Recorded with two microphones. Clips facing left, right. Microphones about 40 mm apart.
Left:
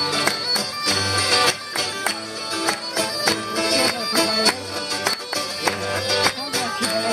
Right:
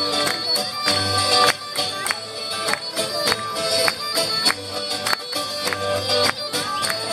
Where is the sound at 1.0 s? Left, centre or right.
Left.